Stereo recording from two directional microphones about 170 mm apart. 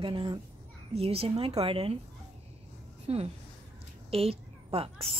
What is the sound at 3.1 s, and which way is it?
A woman's voice, 35° right (ahead or behind).